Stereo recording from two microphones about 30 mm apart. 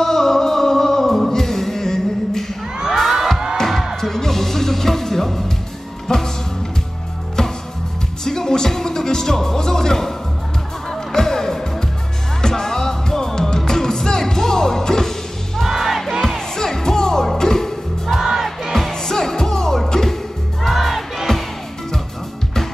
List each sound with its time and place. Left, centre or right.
0.0 s music: centre
3.0 s music: centre
3.9 s music: centre
7.4 s music: left
15.6 s music: centre
16.5 s music: centre
18.2 s music: centre
18.9 s music: centre
20.6 s crowd: centre
21.3 s music: centre